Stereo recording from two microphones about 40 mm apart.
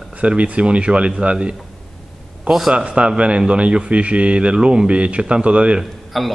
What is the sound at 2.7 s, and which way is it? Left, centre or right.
Speech, right.